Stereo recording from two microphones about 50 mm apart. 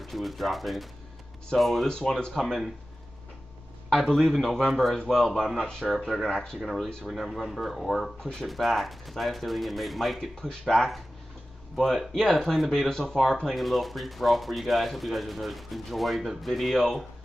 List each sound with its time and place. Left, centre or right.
0.0 s speech: centre
1.9 s speech: centre
2.3 s speech: centre
3.9 s speech: centre
6.2 s speech: centre
6.6 s speech: centre
7.2 s speech: centre
10.3 s speech: centre
11.7 s speech: centre